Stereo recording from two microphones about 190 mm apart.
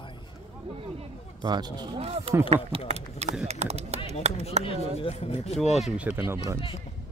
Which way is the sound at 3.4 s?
35° right (ahead or behind).